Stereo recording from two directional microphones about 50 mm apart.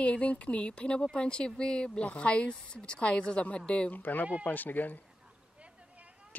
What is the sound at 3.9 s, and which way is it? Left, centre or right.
Speech, left.